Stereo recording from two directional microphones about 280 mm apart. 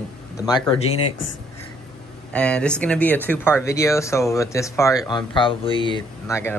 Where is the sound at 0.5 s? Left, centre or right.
Centre.